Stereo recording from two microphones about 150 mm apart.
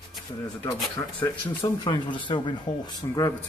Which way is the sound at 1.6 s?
30° left (ahead or behind).